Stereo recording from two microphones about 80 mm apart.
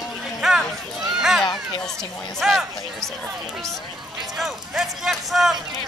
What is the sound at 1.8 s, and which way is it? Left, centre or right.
Speech, centre.